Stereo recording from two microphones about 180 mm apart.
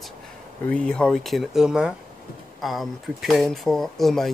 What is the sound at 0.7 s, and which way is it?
Speech, 5° left (ahead or behind).